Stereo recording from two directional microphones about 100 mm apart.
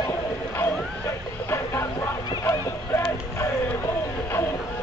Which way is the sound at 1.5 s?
30° left (ahead or behind).